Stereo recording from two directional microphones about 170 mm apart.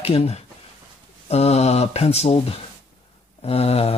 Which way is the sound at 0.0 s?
35° left (ahead or behind).